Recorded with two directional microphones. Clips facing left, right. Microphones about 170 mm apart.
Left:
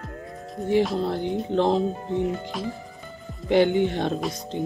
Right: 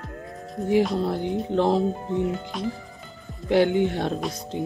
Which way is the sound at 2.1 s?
20° left (ahead or behind).